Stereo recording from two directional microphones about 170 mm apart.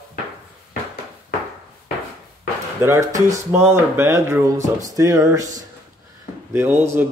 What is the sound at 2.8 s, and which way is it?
Speech, 20° right (ahead or behind).